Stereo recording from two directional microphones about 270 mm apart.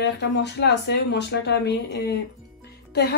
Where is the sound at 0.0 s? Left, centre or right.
Left.